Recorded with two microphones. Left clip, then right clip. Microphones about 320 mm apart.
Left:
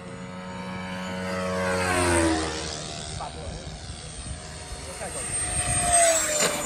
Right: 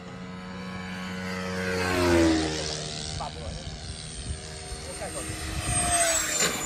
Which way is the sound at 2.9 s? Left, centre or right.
Right.